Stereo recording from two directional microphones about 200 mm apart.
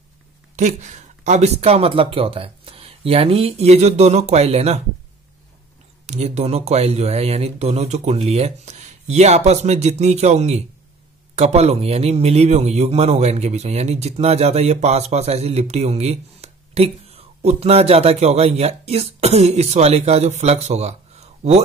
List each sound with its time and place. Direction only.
0.6 s a man's voice: 35° right (ahead or behind)
6.0 s a man's voice: 35° right (ahead or behind)